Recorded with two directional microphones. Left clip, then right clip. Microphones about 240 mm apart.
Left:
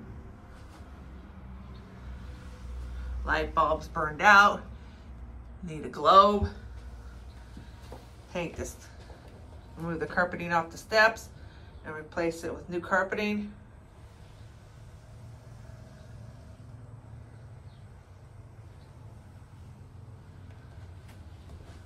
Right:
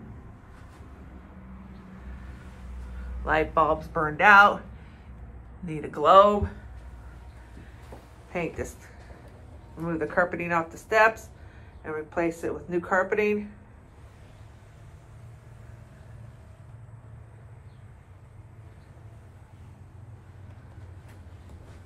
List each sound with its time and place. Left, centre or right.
3.3 s speech: centre
5.7 s speech: centre
8.3 s speech: centre